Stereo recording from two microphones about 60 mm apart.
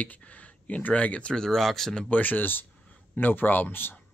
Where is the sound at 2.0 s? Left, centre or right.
Left.